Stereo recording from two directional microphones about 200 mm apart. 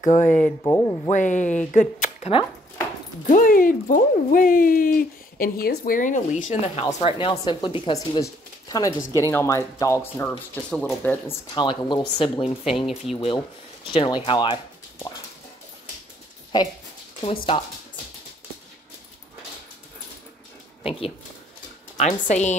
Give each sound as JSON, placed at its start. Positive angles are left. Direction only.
{"t": 0.0, "sound": "a woman's voice", "side_deg": 40}
{"t": 0.7, "sound": "speech", "side_deg": 15}
{"t": 1.1, "sound": "a woman's voice", "side_deg": 40}
{"t": 11.2, "sound": "speech", "side_deg": 25}
{"t": 12.7, "sound": "speech", "side_deg": 0}
{"t": 13.9, "sound": "speech", "side_deg": 25}
{"t": 16.5, "sound": "speech", "side_deg": 20}
{"t": 20.8, "sound": "a woman's voice", "side_deg": 30}